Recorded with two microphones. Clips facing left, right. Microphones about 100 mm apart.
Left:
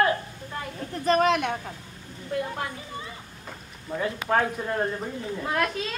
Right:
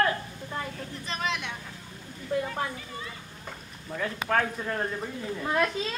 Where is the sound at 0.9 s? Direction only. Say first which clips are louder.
Left 13 dB; 50° left (ahead or behind).